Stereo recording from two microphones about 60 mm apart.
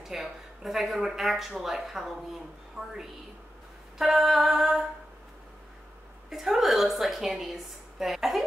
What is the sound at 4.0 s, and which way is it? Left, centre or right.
Speech, centre.